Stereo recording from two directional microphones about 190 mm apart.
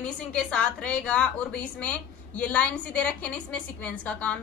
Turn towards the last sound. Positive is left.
turn(degrees=5)  # may be behind; listen again after turning